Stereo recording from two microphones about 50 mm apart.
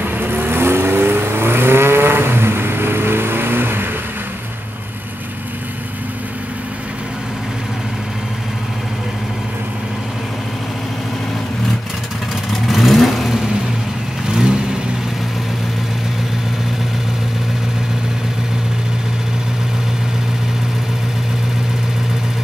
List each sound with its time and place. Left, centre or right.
0.0 s vehicle: right
12.6 s vehicle: centre
14.3 s vehicle: centre